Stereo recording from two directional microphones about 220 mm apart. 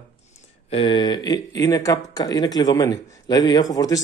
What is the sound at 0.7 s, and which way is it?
Speech, 25° left (ahead or behind).